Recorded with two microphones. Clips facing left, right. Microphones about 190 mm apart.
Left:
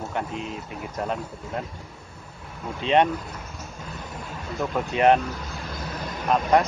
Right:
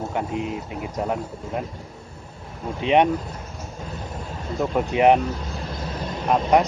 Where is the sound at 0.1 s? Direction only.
15° right (ahead or behind).